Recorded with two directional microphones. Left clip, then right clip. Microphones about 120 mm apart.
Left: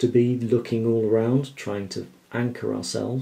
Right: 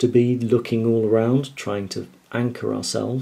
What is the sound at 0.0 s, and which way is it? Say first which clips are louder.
Speech: right 2 dB; 15° right (ahead or behind).